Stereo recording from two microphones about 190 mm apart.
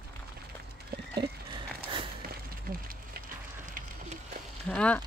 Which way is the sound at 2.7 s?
50° right (ahead or behind).